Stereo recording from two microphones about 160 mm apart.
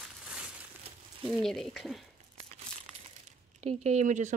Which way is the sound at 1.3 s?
5° left (ahead or behind).